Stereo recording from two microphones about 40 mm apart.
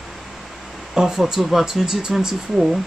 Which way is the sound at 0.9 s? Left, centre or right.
Centre.